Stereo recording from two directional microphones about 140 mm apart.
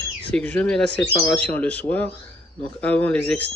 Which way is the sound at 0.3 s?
10° left (ahead or behind).